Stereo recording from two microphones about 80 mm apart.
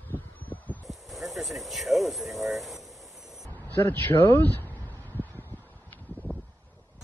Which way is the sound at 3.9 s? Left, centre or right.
Left.